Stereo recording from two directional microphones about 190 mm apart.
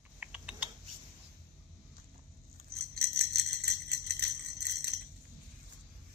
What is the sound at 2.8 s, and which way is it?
Jingle bell, 55° right (ahead or behind).